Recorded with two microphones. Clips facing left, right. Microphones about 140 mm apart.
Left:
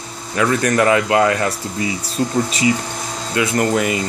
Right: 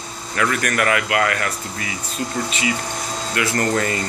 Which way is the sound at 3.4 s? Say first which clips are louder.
Left 4 dB; 15° left (ahead or behind).